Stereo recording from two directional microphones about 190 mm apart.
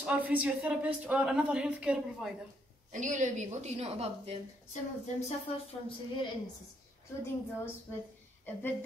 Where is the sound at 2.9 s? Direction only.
40° right (ahead or behind).